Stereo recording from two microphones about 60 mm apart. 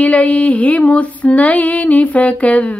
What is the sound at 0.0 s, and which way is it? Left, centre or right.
Female singing, left.